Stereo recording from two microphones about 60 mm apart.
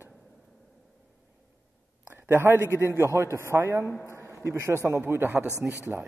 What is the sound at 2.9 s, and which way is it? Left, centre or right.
A man's voice, right.